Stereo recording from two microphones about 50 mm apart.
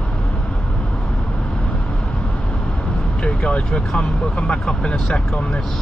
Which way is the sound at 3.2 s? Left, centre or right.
Left.